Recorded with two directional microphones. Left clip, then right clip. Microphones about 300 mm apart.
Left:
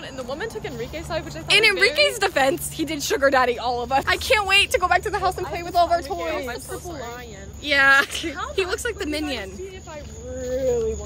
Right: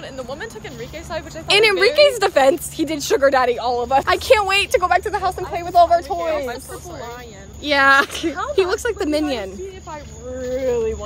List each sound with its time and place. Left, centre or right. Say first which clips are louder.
0.3 s speech: left 1 dB; centre
1.5 s speech: right 3 dB; centre
7.6 s a woman's voice: right 3 dB; centre